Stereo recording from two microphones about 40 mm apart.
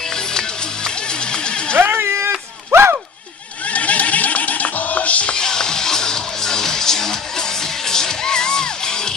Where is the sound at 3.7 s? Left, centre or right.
Left.